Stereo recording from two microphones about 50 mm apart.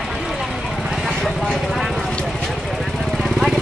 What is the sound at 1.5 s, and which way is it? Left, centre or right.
Speech, centre.